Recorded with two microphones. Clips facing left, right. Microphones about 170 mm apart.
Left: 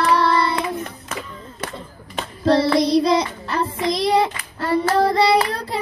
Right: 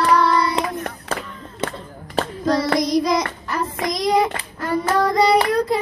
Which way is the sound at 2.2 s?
35° right (ahead or behind).